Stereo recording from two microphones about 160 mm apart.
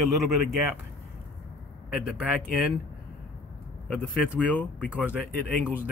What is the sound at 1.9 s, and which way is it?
Speech, 5° right (ahead or behind).